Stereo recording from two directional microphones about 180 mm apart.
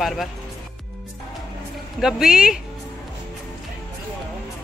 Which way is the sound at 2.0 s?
5° right (ahead or behind).